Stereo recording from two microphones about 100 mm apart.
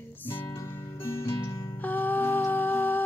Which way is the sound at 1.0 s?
25° left (ahead or behind).